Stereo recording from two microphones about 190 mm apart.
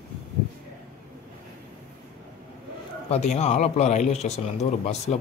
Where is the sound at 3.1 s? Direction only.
35° left (ahead or behind).